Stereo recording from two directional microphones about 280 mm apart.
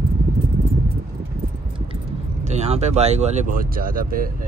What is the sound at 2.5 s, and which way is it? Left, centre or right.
Speech, right.